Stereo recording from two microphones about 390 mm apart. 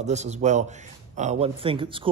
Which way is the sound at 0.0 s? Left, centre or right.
Centre.